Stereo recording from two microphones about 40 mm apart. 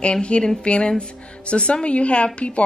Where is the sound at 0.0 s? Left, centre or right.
Left.